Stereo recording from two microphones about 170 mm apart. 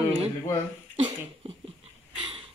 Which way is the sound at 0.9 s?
35° right (ahead or behind).